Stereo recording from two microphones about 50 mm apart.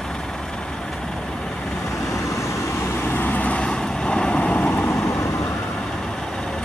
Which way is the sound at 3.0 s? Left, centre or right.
Left.